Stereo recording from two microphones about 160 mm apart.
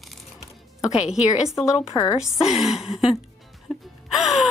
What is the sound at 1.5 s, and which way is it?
Speech, 20° left (ahead or behind).